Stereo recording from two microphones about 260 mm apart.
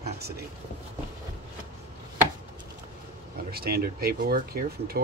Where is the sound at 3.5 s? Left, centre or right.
Right.